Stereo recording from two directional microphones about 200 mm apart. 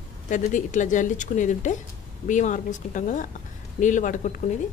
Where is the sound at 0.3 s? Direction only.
40° left (ahead or behind).